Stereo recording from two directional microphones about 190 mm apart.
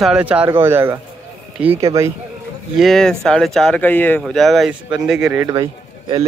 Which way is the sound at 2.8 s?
Centre (ahead or behind).